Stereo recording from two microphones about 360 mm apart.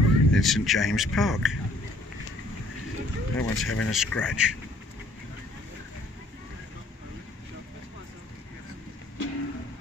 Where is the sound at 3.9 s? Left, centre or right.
Centre.